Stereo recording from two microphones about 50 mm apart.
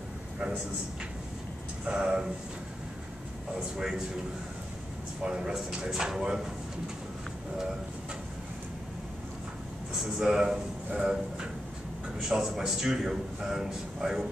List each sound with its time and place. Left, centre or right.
1.9 s a man's voice: centre
3.5 s a man's voice: centre
5.2 s a man's voice: centre
9.9 s a man's voice: centre